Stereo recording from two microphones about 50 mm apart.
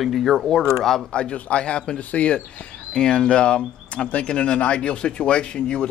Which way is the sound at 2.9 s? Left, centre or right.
Centre.